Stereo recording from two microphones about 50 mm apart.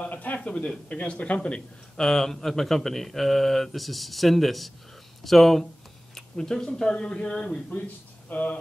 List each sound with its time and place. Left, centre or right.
0.0 s a sound: left
0.4 s speech: centre
2.0 s speech: centre
8.3 s speech: left